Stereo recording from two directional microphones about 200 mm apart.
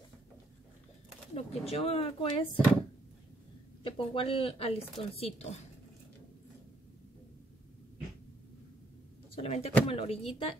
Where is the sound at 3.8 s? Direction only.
25° left (ahead or behind).